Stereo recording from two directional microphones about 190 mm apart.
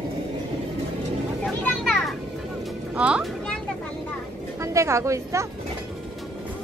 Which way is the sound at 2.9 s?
5° right (ahead or behind).